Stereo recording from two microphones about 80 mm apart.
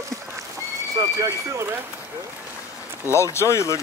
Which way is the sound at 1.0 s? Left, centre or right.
Right.